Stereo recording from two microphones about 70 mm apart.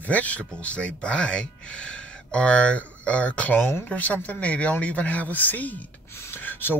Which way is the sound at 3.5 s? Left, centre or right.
Left.